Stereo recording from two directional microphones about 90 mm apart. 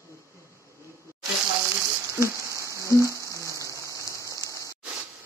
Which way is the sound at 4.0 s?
35° left (ahead or behind).